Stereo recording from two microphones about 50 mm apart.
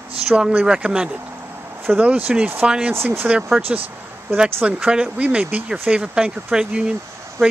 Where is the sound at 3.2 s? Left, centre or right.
Right.